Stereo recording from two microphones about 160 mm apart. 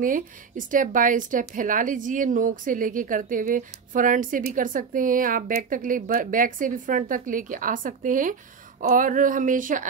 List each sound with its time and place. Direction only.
0.0 s speech: 55° right (ahead or behind)